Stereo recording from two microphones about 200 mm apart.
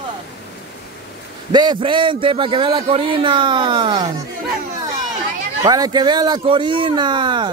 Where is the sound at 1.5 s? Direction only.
20° right (ahead or behind).